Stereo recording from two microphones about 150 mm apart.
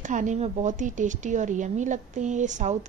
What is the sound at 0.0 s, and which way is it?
Speech, 55° right (ahead or behind).